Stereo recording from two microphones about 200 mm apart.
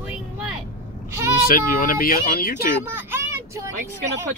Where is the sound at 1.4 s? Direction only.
45° left (ahead or behind).